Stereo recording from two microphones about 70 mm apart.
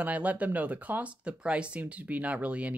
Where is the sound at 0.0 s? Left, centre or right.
Right.